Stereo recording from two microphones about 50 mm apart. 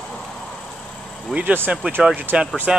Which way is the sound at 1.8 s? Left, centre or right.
Right.